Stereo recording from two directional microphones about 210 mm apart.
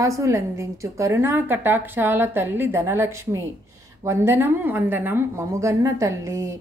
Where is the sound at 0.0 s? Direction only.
15° right (ahead or behind).